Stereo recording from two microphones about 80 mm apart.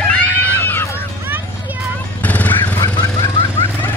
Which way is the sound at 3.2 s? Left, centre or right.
Left.